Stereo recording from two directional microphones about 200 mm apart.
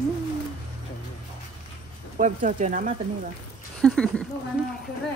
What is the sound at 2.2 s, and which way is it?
Speech, 40° right (ahead or behind).